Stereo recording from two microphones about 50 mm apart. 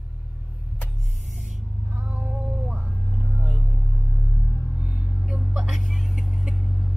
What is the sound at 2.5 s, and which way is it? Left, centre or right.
Vehicle, centre.